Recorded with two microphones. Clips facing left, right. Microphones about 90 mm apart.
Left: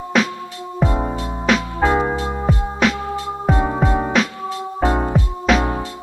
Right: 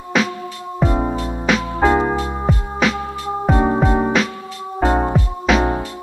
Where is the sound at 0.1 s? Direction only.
Centre (ahead or behind).